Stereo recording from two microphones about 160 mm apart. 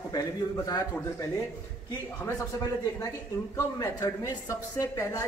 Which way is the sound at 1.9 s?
20° left (ahead or behind).